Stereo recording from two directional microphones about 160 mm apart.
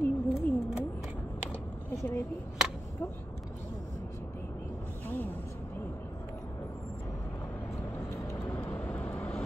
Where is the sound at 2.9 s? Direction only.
15° left (ahead or behind).